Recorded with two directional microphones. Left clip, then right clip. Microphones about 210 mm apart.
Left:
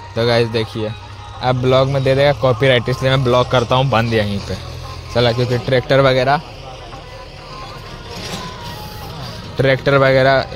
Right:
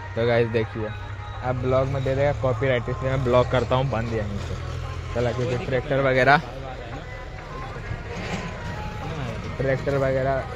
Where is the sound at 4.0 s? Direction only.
45° left (ahead or behind).